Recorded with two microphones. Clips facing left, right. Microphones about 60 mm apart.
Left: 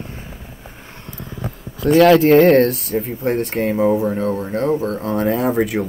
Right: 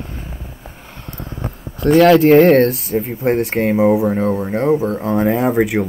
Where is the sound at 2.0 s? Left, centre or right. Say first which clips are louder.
Right 1 dB; centre.